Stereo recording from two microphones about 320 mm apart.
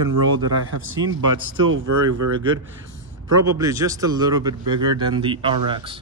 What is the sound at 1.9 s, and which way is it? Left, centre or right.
Speech, right.